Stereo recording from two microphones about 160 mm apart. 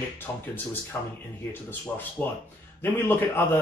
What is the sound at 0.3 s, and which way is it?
Speech, 15° left (ahead or behind).